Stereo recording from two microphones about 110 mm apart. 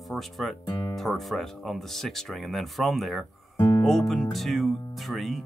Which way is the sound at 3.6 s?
20° left (ahead or behind).